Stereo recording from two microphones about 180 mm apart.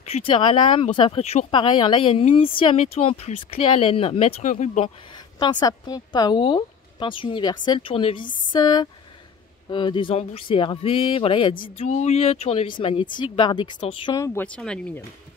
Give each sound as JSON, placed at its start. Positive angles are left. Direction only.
{"t": 0.1, "sound": "a woman's voice", "side_deg": 30}
{"t": 4.8, "sound": "a woman's voice", "side_deg": 25}
{"t": 14.1, "sound": "speech", "side_deg": 15}